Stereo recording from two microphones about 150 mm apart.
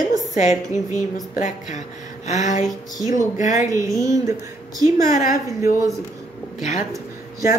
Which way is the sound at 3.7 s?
20° right (ahead or behind).